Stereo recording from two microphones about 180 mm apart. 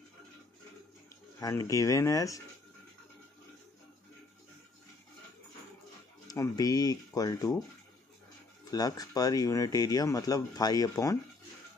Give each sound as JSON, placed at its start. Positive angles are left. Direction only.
{"t": 1.4, "sound": "speech", "side_deg": 20}
{"t": 6.2, "sound": "speech", "side_deg": 20}
{"t": 8.6, "sound": "speech", "side_deg": 20}